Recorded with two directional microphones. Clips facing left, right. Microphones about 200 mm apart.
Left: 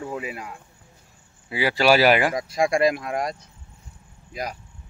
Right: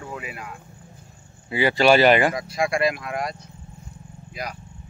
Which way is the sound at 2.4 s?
40° left (ahead or behind).